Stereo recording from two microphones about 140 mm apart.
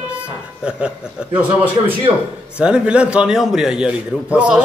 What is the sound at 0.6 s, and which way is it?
A man's voice, 5° right (ahead or behind).